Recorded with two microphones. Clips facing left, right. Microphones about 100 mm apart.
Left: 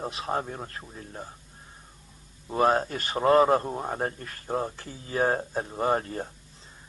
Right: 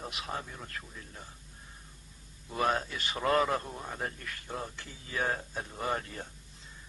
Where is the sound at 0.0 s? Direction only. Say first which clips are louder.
Left 8 dB; 35° left (ahead or behind).